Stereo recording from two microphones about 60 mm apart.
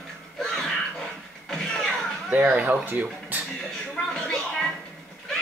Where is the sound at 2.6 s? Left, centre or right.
Right.